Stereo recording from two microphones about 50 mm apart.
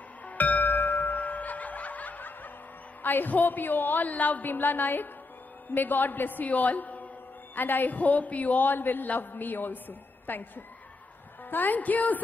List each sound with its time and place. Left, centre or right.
0.2 s music: left
3.0 s a man's voice: left